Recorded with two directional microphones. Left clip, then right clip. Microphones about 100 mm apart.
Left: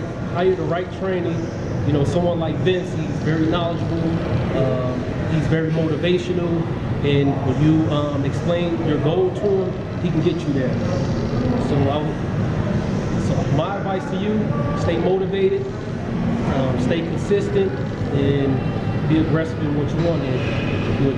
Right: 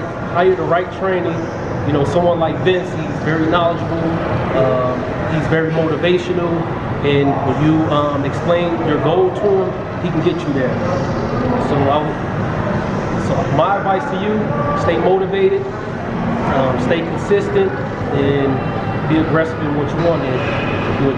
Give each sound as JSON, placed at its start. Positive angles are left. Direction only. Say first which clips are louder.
{"t": 0.4, "sound": "speech", "louder": "right 6 dB", "side_deg": -20}
{"t": 13.3, "sound": "speech", "louder": "right 9 dB", "side_deg": -20}